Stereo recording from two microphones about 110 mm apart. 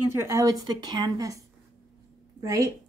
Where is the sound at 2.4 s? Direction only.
30° right (ahead or behind).